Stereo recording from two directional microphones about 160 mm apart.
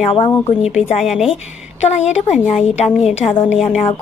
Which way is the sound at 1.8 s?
45° left (ahead or behind).